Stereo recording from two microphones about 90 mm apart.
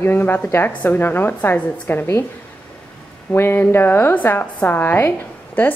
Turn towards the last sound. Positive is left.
turn(degrees=20)  # may be behind; listen again after turning